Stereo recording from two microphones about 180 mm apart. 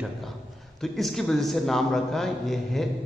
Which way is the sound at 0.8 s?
Centre (ahead or behind).